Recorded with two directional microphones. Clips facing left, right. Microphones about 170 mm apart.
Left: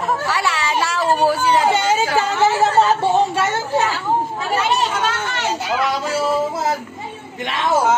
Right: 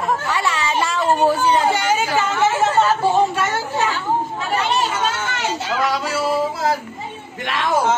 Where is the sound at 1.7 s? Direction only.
30° left (ahead or behind).